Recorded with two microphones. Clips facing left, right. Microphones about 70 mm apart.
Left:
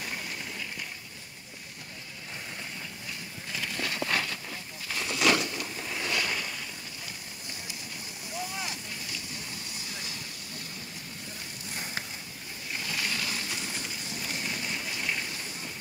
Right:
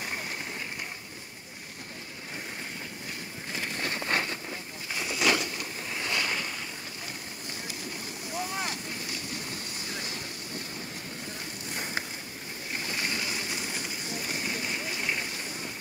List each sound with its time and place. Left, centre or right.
3.5 s vehicle: right
4.9 s boat: centre
8.4 s boat: right
9.8 s vehicle: right
12.7 s a sound: right